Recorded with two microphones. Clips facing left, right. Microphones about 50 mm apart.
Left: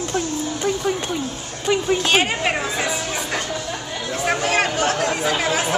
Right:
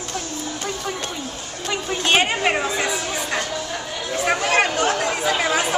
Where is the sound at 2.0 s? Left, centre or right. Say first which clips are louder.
Right 5 dB; centre.